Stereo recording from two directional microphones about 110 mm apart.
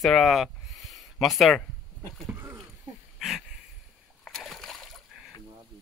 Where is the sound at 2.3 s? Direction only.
20° right (ahead or behind).